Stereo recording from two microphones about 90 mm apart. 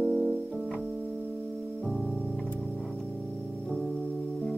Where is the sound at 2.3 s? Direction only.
10° left (ahead or behind).